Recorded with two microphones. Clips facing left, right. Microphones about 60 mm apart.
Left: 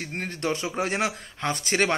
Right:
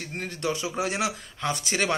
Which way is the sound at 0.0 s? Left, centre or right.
Left.